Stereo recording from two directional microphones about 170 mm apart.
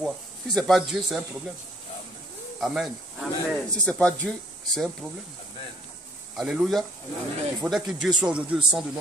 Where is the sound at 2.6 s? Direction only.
Centre (ahead or behind).